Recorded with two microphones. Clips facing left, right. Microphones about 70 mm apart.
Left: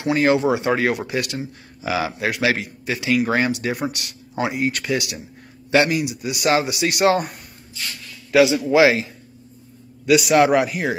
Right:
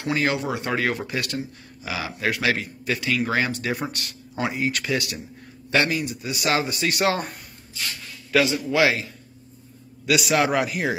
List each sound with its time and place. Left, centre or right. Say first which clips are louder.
0.0 s a man's voice: left 6 dB; centre
0.7 s speech: left 4 dB; centre
1.4 s speech: left 5 dB; left
2.1 s speech: left 3 dB; centre
8.3 s a man's voice: left 6 dB; centre
10.0 s speech: left 6 dB; centre